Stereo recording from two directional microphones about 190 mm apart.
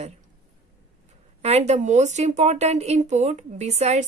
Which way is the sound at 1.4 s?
35° right (ahead or behind).